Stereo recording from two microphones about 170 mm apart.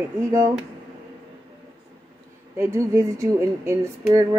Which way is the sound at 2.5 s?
15° right (ahead or behind).